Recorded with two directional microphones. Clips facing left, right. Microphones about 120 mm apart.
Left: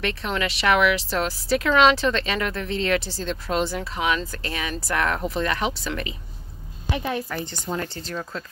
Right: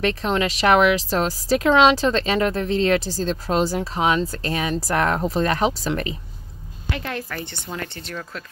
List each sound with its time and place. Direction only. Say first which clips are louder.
0.0 s speech: right 5 dB; 30° right (ahead or behind)
6.9 s a woman's voice: left 2 dB; 15° left (ahead or behind)
7.7 s speech: left 3 dB; 25° left (ahead or behind)